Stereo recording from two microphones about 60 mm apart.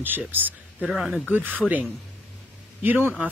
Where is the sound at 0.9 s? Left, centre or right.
Centre.